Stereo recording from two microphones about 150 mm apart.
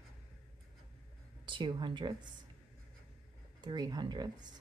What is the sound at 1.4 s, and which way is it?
Speech, 30° right (ahead or behind).